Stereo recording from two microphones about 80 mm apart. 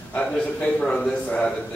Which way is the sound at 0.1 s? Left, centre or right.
Centre.